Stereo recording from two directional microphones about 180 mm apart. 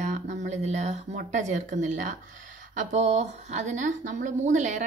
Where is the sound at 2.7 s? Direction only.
40° right (ahead or behind).